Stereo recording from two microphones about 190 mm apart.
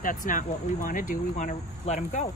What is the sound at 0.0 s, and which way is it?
Speech, 45° left (ahead or behind).